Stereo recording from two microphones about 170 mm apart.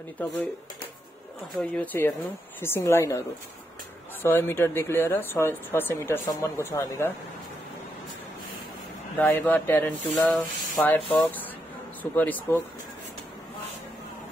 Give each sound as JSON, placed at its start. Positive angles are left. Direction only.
{"t": 1.6, "sound": "speech", "side_deg": 10}
{"t": 4.2, "sound": "speech", "side_deg": 15}
{"t": 9.2, "sound": "speech", "side_deg": 10}